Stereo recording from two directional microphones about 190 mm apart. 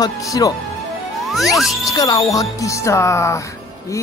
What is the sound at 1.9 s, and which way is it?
Speech, 20° left (ahead or behind).